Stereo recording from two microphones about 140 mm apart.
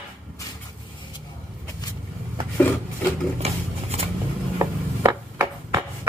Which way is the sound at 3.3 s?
50° right (ahead or behind).